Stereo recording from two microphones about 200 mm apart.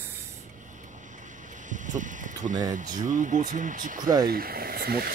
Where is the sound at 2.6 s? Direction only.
40° right (ahead or behind).